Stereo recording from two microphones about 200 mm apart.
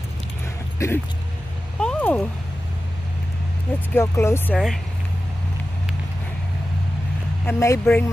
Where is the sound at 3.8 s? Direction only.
10° left (ahead or behind).